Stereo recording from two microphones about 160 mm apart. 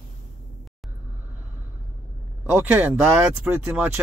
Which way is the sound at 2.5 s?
10° right (ahead or behind).